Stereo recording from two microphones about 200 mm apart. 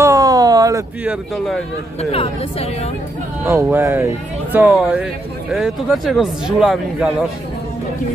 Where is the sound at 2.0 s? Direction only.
30° left (ahead or behind).